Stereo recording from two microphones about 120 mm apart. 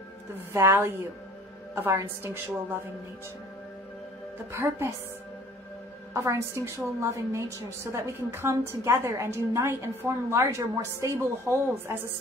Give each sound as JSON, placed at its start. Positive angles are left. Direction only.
{"t": 0.5, "sound": "a woman's voice", "side_deg": -20}
{"t": 4.5, "sound": "a woman's voice", "side_deg": -25}
{"t": 6.1, "sound": "a woman's voice", "side_deg": -25}